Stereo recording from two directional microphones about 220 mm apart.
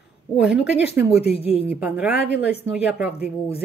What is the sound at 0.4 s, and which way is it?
Speech, 5° right (ahead or behind).